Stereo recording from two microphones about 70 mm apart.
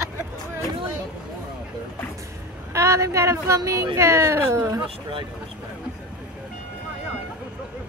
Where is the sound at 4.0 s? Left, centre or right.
Right.